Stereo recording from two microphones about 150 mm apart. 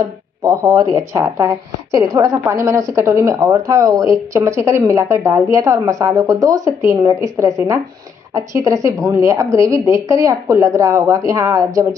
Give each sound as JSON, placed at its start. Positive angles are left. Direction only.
{"t": 0.0, "sound": "speech", "side_deg": -25}